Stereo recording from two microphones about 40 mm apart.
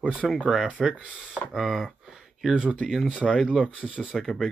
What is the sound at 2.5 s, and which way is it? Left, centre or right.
Speech, right.